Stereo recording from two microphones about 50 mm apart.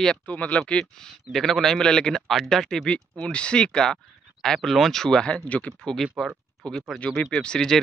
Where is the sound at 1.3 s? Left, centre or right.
Centre.